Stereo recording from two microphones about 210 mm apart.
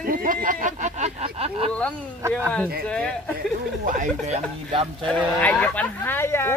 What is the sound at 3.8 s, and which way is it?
Speech, 40° right (ahead or behind).